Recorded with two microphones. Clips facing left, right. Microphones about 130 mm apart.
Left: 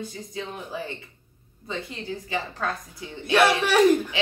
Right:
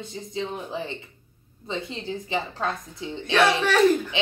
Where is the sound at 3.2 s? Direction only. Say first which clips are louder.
Left 1 dB; 10° left (ahead or behind).